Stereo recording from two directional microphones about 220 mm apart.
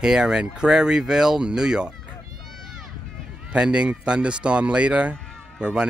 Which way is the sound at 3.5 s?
5° right (ahead or behind).